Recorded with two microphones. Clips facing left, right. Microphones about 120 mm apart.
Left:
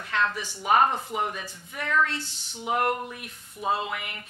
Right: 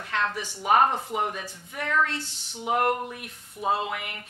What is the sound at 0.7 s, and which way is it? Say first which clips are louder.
A woman's voice: right 1 dB; 45° right (ahead or behind).